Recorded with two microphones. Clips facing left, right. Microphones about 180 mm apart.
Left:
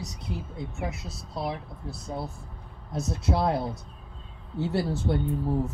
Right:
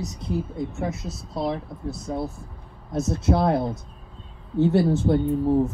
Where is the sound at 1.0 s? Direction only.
25° right (ahead or behind).